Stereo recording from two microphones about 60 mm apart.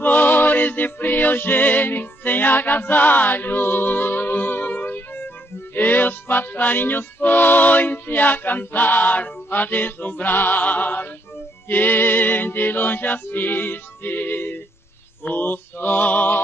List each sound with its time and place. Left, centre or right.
0.0 s music: left